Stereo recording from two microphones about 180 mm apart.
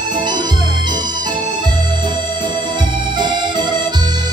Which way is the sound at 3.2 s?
25° right (ahead or behind).